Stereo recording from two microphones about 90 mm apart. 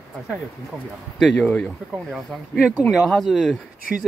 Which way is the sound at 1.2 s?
10° left (ahead or behind).